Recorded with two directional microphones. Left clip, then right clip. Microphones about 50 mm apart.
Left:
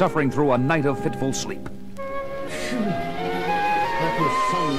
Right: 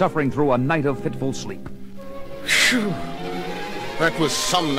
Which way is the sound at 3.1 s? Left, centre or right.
Centre.